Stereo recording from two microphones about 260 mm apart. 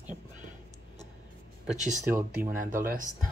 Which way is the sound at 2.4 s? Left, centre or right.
Right.